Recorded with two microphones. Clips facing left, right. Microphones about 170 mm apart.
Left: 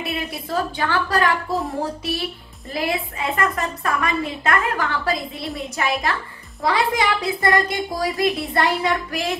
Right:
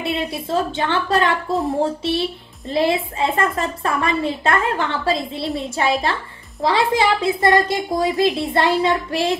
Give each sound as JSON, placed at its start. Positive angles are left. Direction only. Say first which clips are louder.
{"t": 0.0, "sound": "a woman's voice", "louder": "right 4 dB", "side_deg": -25}